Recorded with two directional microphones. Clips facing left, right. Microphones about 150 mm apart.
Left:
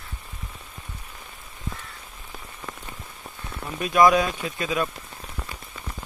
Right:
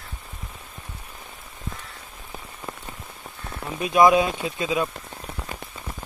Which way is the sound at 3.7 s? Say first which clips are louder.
Right 1 dB; 20° right (ahead or behind).